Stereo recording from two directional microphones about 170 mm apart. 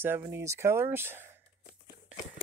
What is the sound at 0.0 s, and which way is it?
Speech, 15° right (ahead or behind).